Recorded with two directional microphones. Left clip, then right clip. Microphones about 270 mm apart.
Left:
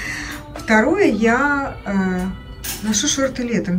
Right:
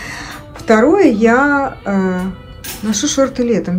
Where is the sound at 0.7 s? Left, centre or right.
Centre.